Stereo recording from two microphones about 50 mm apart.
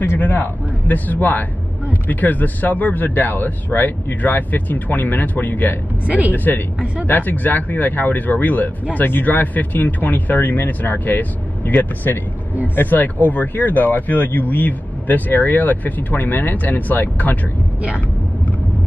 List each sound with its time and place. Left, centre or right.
0.2 s a man's voice: left
6.0 s speech: right
6.3 s speech: left